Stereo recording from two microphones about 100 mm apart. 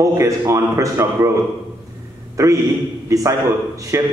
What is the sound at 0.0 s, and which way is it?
A man's voice, 35° right (ahead or behind).